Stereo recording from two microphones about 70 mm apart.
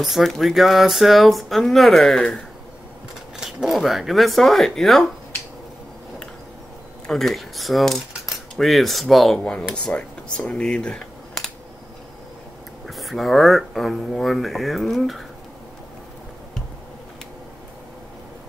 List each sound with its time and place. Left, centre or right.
0.0 s speech: centre
3.3 s speech: centre
7.1 s speech: centre
12.8 s speech: centre